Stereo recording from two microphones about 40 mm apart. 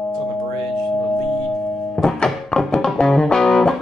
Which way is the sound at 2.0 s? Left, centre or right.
Centre.